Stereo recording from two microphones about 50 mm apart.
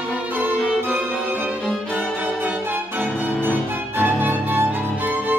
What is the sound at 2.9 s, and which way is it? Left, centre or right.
Music, right.